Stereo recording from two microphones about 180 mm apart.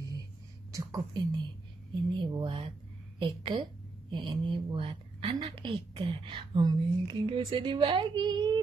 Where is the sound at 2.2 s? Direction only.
25° right (ahead or behind).